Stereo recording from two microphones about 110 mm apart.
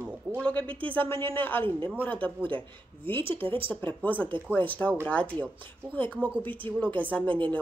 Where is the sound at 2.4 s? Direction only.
50° right (ahead or behind).